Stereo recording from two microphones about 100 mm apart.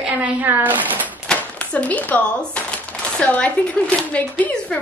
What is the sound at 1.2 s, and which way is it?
Speech, 10° left (ahead or behind).